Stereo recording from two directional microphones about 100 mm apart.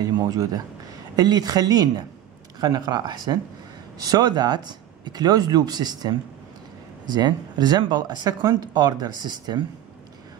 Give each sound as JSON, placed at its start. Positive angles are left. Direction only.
{"t": 0.0, "sound": "speech", "side_deg": -40}